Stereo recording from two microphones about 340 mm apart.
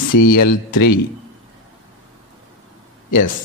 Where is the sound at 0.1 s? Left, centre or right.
Left.